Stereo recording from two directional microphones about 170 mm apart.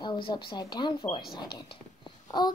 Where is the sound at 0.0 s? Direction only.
25° left (ahead or behind).